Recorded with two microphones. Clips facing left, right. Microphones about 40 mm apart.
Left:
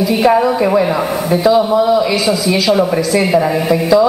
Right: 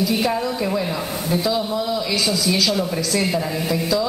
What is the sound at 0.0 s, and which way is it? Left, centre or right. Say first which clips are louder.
A woman's voice: left 9 dB; left.